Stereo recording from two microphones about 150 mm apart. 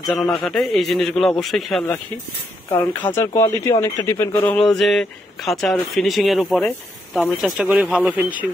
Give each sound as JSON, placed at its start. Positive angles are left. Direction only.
{"t": 0.0, "sound": "speech", "side_deg": 0}
{"t": 2.7, "sound": "speech", "side_deg": 15}
{"t": 4.5, "sound": "speech", "side_deg": 5}